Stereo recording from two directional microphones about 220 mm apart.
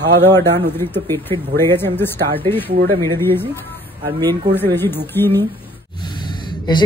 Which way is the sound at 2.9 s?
20° right (ahead or behind).